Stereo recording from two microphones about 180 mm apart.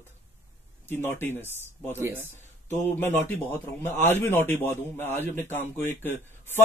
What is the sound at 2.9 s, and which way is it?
A man's voice, 10° left (ahead or behind).